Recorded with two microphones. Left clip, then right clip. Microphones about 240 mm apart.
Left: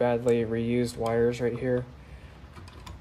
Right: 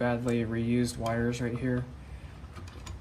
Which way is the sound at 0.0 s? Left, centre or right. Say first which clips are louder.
Left 6 dB; left.